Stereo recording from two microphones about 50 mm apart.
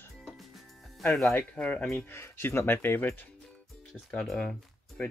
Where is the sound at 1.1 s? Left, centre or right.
Centre.